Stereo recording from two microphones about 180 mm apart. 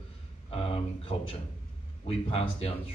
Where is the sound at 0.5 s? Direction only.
30° left (ahead or behind).